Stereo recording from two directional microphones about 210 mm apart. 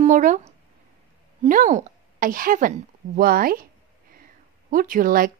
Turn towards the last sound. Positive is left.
turn(degrees=-40)  # may be behind; listen again after turning